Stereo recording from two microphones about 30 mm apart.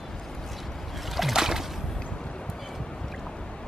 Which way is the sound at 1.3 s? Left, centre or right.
Centre.